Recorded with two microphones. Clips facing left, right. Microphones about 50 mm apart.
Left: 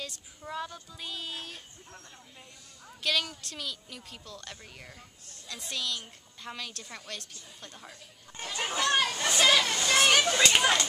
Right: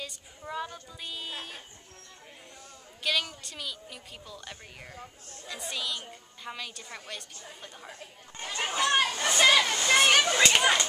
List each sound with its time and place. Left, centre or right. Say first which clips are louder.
0.0 s speech: even; centre
3.0 s speech: even; centre
8.4 s speech: right 2 dB; centre